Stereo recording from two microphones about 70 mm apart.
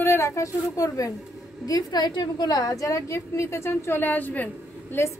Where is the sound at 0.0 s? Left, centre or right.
Left.